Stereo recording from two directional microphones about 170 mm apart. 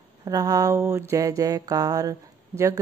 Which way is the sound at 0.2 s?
20° right (ahead or behind).